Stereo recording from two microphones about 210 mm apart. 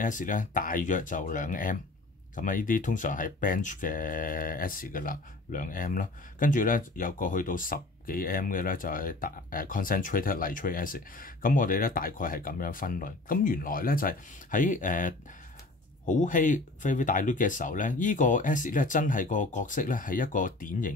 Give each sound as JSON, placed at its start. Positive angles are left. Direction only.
{"t": 0.0, "sound": "speech", "side_deg": 40}